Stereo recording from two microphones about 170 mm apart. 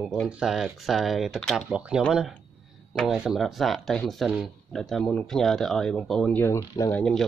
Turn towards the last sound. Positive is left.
turn(degrees=5)  # may be behind; listen again after turning